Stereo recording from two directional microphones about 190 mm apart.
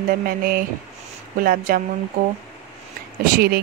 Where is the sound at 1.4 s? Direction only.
50° right (ahead or behind).